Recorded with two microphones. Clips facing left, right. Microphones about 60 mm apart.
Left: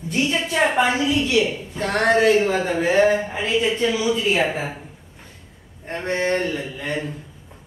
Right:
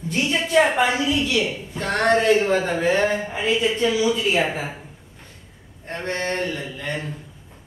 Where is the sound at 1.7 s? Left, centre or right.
Centre.